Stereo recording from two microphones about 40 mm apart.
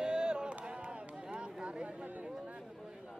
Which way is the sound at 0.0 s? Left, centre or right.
Right.